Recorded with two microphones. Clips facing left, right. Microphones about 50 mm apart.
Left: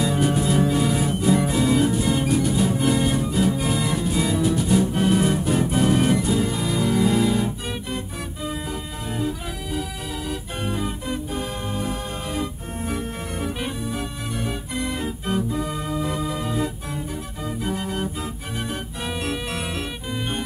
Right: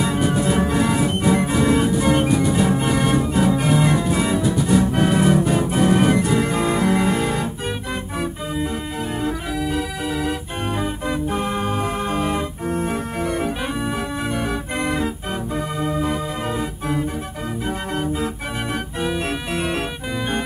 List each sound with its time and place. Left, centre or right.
0.0 s music: right
0.7 s music: right
1.3 s music: right
4.9 s organ: right
5.2 s organ: right
6.3 s music: right
11.7 s music: right
13.2 s organ: right
15.5 s organ: right